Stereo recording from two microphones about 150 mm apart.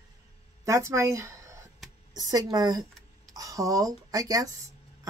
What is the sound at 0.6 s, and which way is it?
Speech, 20° right (ahead or behind).